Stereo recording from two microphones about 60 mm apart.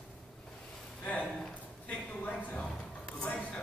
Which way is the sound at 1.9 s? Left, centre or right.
Left.